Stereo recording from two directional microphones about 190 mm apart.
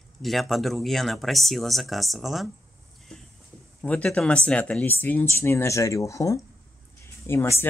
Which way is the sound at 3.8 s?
5° left (ahead or behind).